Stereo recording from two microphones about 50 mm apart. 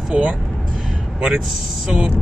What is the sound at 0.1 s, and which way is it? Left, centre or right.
Speech, centre.